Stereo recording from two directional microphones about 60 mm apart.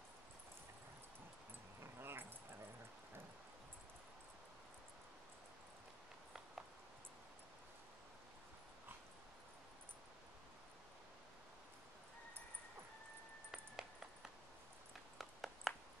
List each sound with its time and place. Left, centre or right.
1.8 s keys jangling: right
13.5 s music: centre
15.1 s a sound: centre